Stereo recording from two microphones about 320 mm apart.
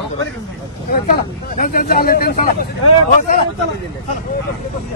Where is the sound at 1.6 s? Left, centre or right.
Left.